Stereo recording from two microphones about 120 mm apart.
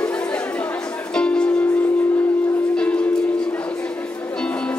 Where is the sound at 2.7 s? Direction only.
10° left (ahead or behind).